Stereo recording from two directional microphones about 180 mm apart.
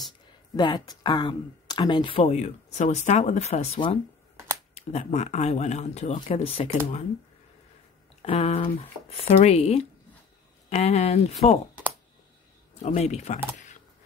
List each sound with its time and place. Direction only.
0.6 s speech: 25° left (ahead or behind)
8.2 s speech: 35° left (ahead or behind)
12.8 s speech: 40° left (ahead or behind)